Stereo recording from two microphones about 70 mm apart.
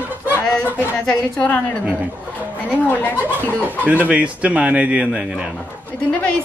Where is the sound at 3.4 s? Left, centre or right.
Right.